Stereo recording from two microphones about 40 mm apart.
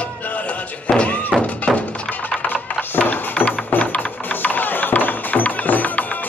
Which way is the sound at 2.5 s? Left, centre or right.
Left.